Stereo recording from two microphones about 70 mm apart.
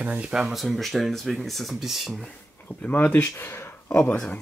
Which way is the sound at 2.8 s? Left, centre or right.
Left.